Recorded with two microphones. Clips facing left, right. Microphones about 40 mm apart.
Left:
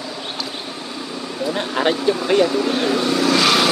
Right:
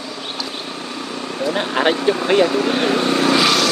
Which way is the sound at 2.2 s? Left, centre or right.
Right.